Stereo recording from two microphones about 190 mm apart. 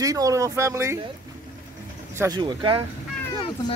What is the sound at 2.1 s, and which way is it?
Speech, 15° right (ahead or behind).